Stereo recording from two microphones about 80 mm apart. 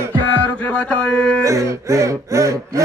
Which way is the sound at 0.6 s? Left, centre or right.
Centre.